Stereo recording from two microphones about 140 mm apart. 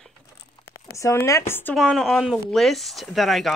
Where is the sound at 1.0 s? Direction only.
20° left (ahead or behind).